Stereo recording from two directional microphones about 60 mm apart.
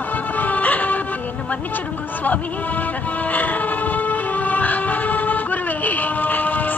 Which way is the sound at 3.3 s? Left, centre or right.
Left.